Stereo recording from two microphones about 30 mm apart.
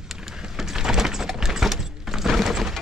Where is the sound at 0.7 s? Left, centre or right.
Centre.